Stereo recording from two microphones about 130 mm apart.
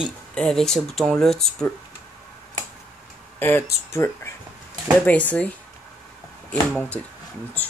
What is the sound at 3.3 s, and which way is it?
Speech, 15° left (ahead or behind).